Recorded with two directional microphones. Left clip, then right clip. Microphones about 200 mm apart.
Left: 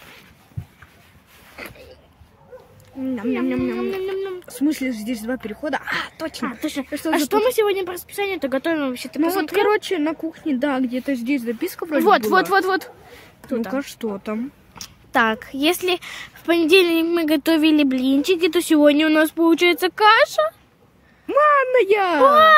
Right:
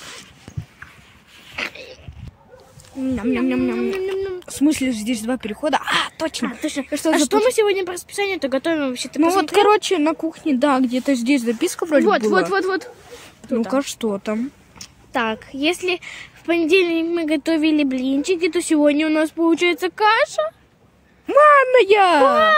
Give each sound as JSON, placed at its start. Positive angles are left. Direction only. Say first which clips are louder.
{"t": 3.2, "sound": "speech", "louder": "right 2 dB", "side_deg": -35}
{"t": 6.4, "sound": "speech", "louder": "right 1 dB", "side_deg": -5}
{"t": 9.2, "sound": "speech", "louder": "right 4 dB", "side_deg": -25}
{"t": 12.0, "sound": "speech", "louder": "left 3 dB", "side_deg": 15}
{"t": 13.7, "sound": "speech", "louder": "right 5 dB", "side_deg": -25}
{"t": 14.8, "sound": "a woman's voice", "louder": "left 4 dB", "side_deg": 20}
{"t": 21.3, "sound": "speech", "louder": "right 4 dB", "side_deg": -20}